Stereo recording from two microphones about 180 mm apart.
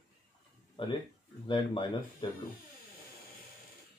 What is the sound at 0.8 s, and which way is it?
Speech, 30° left (ahead or behind).